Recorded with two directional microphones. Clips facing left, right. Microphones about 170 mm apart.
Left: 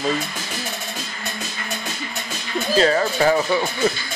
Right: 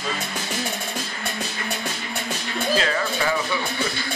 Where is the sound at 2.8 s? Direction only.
35° left (ahead or behind).